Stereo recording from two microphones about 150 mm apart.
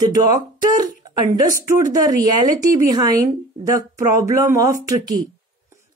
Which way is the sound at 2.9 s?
25° right (ahead or behind).